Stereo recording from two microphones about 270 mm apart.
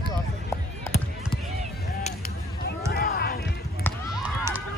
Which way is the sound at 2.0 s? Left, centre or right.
Left.